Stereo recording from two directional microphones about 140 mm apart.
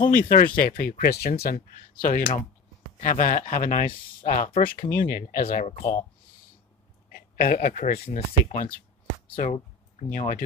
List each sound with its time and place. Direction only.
0.0 s speech: 90° left
4.3 s speech: 65° left (ahead or behind)
4.9 s speech: 90° left
7.1 s speech: 90° left; by 8.7 s 70° left (ahead or behind)
9.4 s a sound: 70° left (ahead or behind)
10.1 s speech: 80° left